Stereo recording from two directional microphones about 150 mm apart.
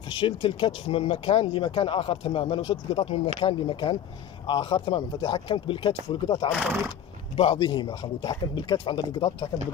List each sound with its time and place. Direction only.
0.2 s speech: 35° left (ahead or behind)
6.5 s speech: 10° right (ahead or behind)
7.3 s speech: 35° left (ahead or behind)